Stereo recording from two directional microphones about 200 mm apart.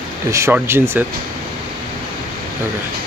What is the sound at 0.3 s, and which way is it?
Speech, 15° right (ahead or behind).